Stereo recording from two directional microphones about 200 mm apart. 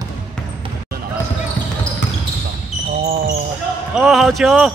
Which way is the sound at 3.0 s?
50° right (ahead or behind).